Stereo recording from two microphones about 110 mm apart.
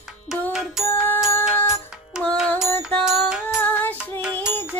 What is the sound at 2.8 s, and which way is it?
Music, 5° right (ahead or behind).